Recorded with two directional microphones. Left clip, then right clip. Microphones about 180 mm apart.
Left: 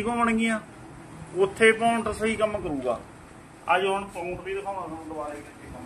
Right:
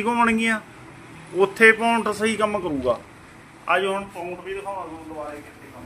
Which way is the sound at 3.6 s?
35° right (ahead or behind).